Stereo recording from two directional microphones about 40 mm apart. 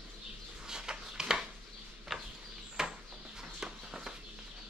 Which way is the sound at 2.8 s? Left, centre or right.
Centre.